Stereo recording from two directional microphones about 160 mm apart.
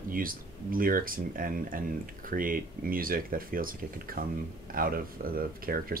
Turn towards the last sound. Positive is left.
turn(degrees=-65)  # may be behind; listen again after turning